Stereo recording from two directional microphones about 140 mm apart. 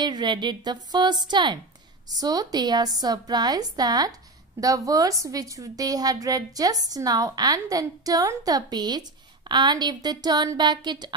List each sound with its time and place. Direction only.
0.0 s a woman's voice: 30° right (ahead or behind)